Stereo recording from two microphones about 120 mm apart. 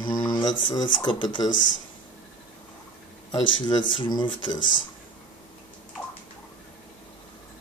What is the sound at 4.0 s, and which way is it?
Speech, 40° left (ahead or behind).